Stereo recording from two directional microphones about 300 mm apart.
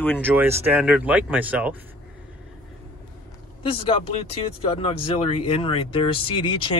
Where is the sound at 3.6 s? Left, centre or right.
Centre.